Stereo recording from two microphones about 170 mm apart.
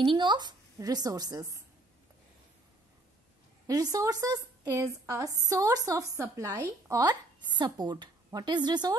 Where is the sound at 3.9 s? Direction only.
20° right (ahead or behind).